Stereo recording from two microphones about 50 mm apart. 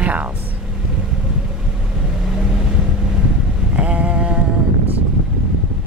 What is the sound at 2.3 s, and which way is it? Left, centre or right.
Vehicle, centre.